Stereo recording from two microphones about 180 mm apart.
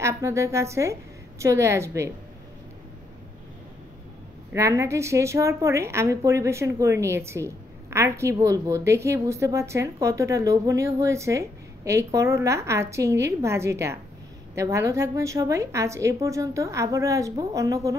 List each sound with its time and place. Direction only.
0.0 s a woman's voice: 15° right (ahead or behind)
4.5 s a woman's voice: 15° right (ahead or behind)